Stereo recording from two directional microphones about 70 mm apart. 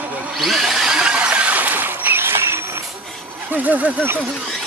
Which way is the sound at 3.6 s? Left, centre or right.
Right.